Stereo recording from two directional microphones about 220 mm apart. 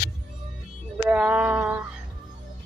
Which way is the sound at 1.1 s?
5° right (ahead or behind).